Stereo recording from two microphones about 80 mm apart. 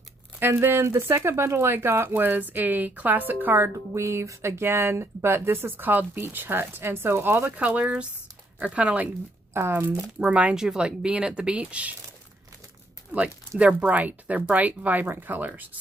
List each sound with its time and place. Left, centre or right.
0.4 s speech: right
9.5 s speech: right
10.5 s speech: centre
13.1 s speech: centre